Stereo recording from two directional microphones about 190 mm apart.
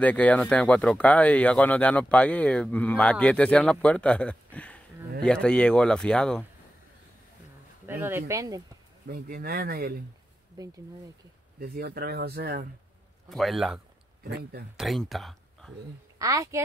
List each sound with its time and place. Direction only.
0.0 s speech: 5° left (ahead or behind)
7.8 s speech: 10° right (ahead or behind)
9.0 s speech: 55° right (ahead or behind)
10.6 s speech: 20° right (ahead or behind)
11.6 s speech: 55° right (ahead or behind)
13.3 s speech: centre (ahead or behind)
14.2 s speech: 55° right (ahead or behind)
14.8 s speech: centre (ahead or behind)
16.2 s speech: 15° right (ahead or behind)